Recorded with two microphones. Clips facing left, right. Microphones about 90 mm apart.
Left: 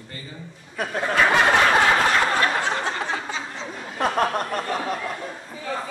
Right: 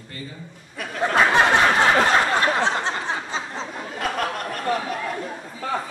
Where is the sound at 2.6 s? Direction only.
30° right (ahead or behind).